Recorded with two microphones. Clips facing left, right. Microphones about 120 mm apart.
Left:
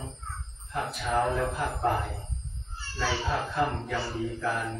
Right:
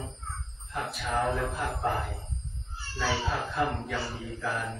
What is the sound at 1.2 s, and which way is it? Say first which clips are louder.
Speech: left 2 dB; centre (ahead or behind).